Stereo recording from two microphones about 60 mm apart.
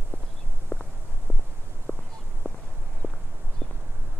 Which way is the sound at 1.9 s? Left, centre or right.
Left.